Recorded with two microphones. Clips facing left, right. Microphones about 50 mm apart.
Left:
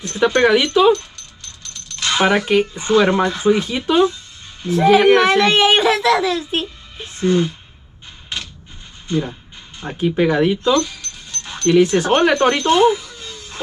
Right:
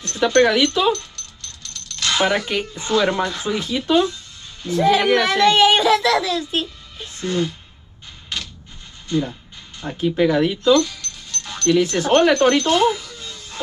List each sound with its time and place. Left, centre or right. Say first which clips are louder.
0.0 s speech: left 1 dB; centre
5.0 s a child's voice: left 3 dB; left
9.0 s a sound: left 1 dB; left
12.1 s speech: even; centre